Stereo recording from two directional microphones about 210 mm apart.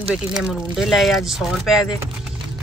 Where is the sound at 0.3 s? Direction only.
5° right (ahead or behind).